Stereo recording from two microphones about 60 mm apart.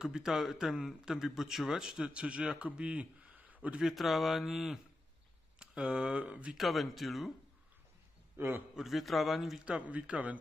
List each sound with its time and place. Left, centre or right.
0.0 s a man's voice: centre
3.8 s speech: centre
5.6 s speech: centre
6.5 s speech: centre
8.4 s a man's voice: right
8.7 s speech: centre
9.7 s speech: right